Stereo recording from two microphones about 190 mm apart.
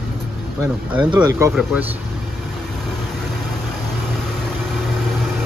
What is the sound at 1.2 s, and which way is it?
Speech, 15° right (ahead or behind).